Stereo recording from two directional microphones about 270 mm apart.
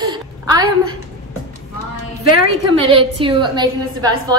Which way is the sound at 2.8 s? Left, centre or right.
Centre.